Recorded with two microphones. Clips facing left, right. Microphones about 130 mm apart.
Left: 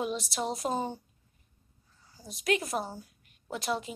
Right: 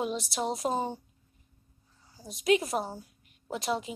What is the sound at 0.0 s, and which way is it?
Speech, 25° right (ahead or behind).